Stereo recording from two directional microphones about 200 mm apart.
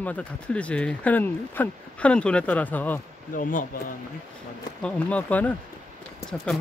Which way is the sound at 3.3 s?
45° left (ahead or behind).